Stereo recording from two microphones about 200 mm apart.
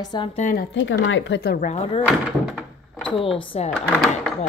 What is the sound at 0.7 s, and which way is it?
Speech, 70° left (ahead or behind).